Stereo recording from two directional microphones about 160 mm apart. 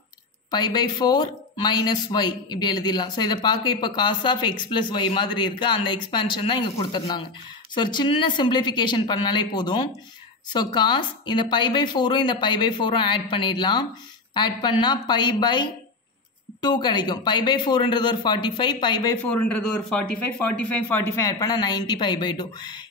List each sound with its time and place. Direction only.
0.5 s speech: 25° left (ahead or behind)
19.2 s speech: 5° left (ahead or behind); by 22.8 s 30° left (ahead or behind)